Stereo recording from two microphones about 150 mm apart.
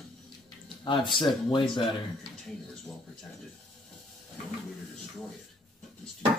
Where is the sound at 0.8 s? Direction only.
30° left (ahead or behind).